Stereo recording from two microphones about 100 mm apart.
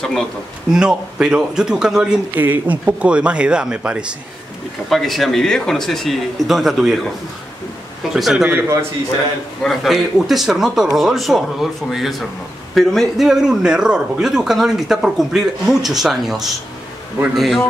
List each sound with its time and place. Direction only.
0.0 s speech: 5° left (ahead or behind)
0.7 s speech: 5° right (ahead or behind)
2.3 s speech: 20° right (ahead or behind)
4.8 s a man's voice: centre (ahead or behind)
8.1 s a man's voice: 5° right (ahead or behind)
9.6 s a man's voice: centre (ahead or behind)